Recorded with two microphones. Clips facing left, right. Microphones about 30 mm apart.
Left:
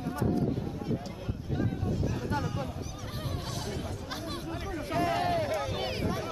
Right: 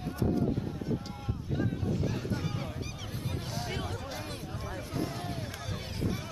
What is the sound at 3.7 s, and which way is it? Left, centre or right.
Chatter, right.